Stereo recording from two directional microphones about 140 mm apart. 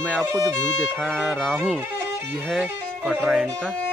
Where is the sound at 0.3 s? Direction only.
25° right (ahead or behind).